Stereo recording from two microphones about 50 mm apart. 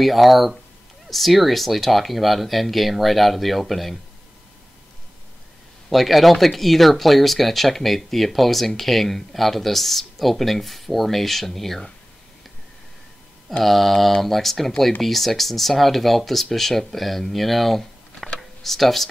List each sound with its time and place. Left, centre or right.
0.0 s speech: centre
5.9 s speech: centre
13.5 s speech: centre